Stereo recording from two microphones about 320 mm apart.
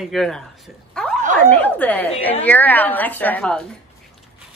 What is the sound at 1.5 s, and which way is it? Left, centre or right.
Speech, centre.